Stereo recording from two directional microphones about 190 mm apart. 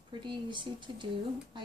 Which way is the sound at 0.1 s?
25° right (ahead or behind).